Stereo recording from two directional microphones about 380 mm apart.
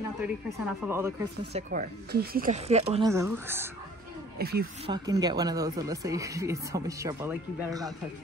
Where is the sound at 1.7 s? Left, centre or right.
Right; by 3.7 s centre.